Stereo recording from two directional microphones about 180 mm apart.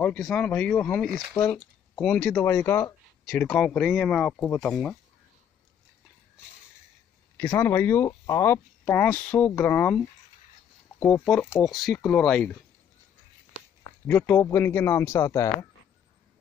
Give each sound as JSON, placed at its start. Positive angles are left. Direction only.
{"t": 0.0, "sound": "speech", "side_deg": 5}
{"t": 1.3, "sound": "speech", "side_deg": 20}
{"t": 2.0, "sound": "speech", "side_deg": 5}
{"t": 7.3, "sound": "speech", "side_deg": 10}
{"t": 11.1, "sound": "speech", "side_deg": 5}
{"t": 14.0, "sound": "speech", "side_deg": 10}